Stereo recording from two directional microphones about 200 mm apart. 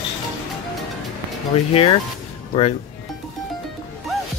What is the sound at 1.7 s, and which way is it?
Speech, 30° left (ahead or behind).